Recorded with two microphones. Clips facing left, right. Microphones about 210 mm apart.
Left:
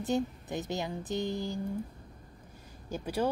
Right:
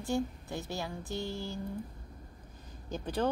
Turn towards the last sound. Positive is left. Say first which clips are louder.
# left 1 dB
turn(degrees=10)  # may be behind; listen again after turning